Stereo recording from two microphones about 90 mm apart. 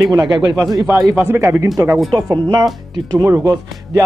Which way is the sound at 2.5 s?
40° right (ahead or behind).